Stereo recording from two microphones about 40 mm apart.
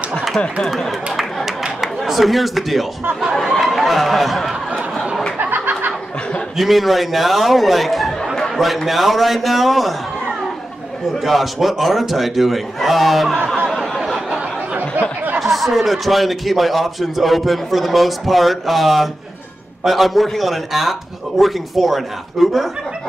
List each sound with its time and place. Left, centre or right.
0.6 s speech: centre
1.8 s speech: centre
3.5 s chatter: centre
5.4 s a sound: right
6.5 s a man's voice: centre
11.2 s a man's voice: centre
13.7 s a sound: centre
14.8 s a sound: right
15.4 s a man's voice: centre